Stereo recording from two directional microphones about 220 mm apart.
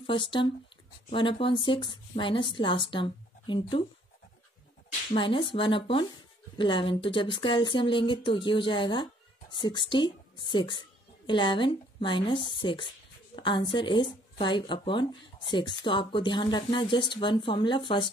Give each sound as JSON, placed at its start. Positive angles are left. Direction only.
{"t": 0.0, "sound": "speech", "side_deg": 20}
{"t": 5.1, "sound": "speech", "side_deg": 20}